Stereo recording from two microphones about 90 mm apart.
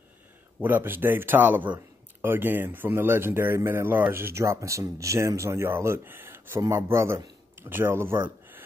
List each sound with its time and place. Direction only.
0.6 s speech: 20° right (ahead or behind)